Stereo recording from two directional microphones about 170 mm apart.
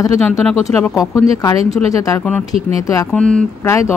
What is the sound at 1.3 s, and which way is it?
Speech, 20° left (ahead or behind).